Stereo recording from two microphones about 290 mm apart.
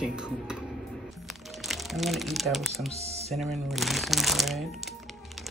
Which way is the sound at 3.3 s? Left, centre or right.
Centre.